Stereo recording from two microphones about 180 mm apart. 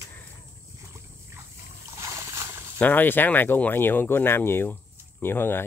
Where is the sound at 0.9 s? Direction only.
15° right (ahead or behind).